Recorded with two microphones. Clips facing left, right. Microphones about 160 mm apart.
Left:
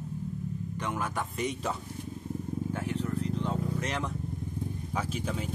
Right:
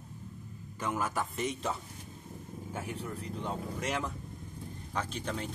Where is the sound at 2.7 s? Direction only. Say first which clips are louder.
Left 3 dB; 10° right (ahead or behind).